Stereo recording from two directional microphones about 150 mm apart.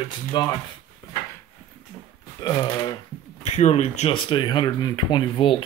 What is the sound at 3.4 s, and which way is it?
Speech, 50° left (ahead or behind).